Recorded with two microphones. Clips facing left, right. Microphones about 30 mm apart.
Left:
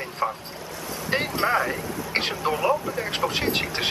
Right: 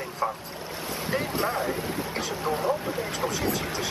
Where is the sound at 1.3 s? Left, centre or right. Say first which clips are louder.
Left 8 dB; left.